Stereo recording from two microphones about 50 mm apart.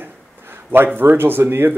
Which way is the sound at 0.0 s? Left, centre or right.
Right.